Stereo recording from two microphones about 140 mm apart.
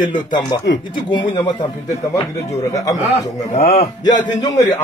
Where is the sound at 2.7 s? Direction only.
25° left (ahead or behind).